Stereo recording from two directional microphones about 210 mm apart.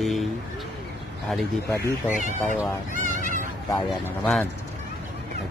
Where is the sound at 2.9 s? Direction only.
40° left (ahead or behind).